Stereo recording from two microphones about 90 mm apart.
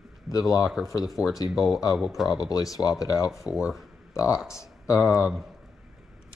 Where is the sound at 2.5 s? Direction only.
40° left (ahead or behind).